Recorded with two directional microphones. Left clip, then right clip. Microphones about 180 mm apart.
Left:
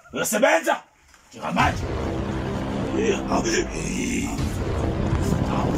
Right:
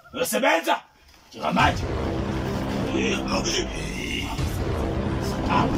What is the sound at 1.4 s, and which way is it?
Music, centre (ahead or behind).